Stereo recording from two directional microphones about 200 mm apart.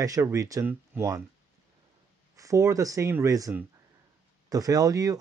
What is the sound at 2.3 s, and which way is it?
Speech, 15° right (ahead or behind).